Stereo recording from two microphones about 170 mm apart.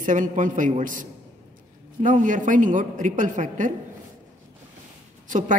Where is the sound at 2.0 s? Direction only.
50° right (ahead or behind).